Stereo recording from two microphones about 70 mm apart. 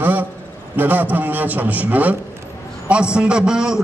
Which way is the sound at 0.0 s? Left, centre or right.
Right.